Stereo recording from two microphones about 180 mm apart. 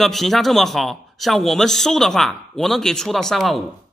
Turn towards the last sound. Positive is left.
turn(degrees=0)  # may be behind; listen again after turning